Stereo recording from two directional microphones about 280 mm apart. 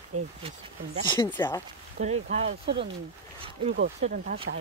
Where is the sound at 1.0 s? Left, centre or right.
Centre.